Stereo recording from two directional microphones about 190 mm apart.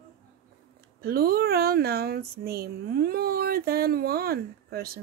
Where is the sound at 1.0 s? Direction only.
55° right (ahead or behind).